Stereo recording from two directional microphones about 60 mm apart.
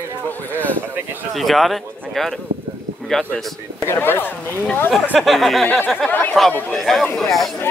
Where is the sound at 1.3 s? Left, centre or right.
Centre.